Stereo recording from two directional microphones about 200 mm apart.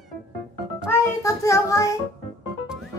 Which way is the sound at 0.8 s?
15° left (ahead or behind).